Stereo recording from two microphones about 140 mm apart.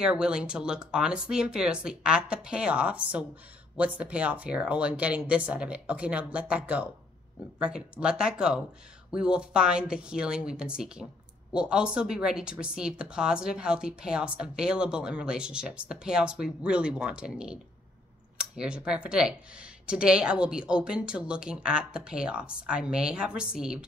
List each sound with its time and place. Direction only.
0.0 s speech: 5° right (ahead or behind)